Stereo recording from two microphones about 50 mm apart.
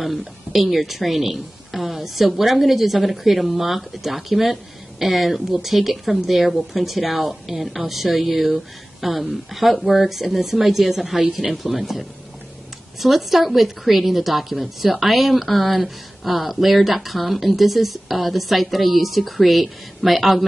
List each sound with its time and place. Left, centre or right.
0.0 s a woman's voice: centre